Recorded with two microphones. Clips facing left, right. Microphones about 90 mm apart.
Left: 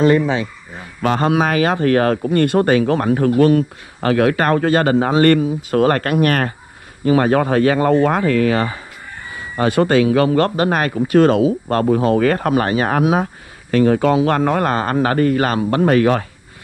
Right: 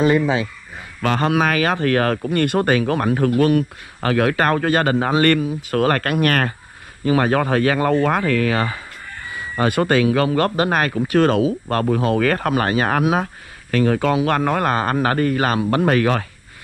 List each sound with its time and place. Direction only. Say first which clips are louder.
1.0 s a man's voice: left 2 dB; 30° left (ahead or behind)